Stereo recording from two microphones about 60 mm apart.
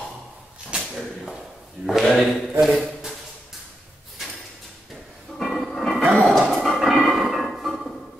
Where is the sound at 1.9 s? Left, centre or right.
Centre.